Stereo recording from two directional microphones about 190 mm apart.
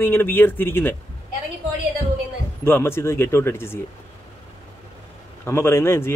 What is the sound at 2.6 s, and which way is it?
A man's voice, 10° left (ahead or behind).